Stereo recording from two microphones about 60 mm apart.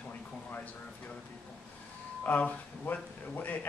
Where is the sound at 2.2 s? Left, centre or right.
Left.